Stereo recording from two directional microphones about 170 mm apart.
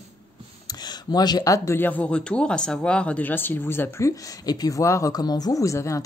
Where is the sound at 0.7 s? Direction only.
25° left (ahead or behind).